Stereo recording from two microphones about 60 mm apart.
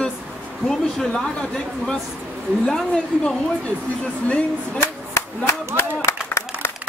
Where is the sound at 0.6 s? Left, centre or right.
Centre.